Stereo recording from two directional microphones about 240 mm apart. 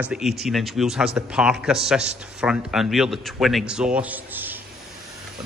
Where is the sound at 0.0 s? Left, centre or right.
Centre.